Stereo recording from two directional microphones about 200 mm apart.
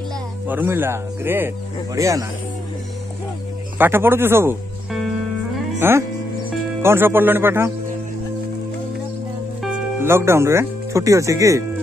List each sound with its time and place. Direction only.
0.5 s speech: 10° right (ahead or behind)
3.7 s speech: 10° right (ahead or behind)
5.8 s speech: 10° right (ahead or behind)
10.0 s speech: 10° right (ahead or behind)